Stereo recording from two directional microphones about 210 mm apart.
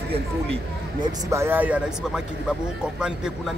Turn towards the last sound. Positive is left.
turn(degrees=-5)  # may be behind; listen again after turning